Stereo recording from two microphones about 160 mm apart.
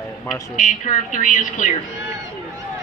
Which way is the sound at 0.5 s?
55° left (ahead or behind).